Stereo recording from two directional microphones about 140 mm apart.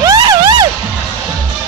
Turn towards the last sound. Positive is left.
turn(degrees=-25)  # may be behind; listen again after turning